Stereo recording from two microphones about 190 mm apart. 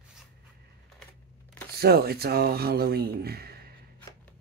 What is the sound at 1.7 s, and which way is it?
Speech, 55° right (ahead or behind).